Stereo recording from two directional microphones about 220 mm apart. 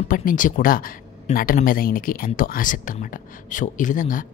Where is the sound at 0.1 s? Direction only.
40° left (ahead or behind).